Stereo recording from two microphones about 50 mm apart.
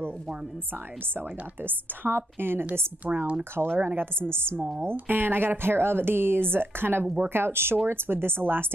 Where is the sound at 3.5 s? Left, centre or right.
Right.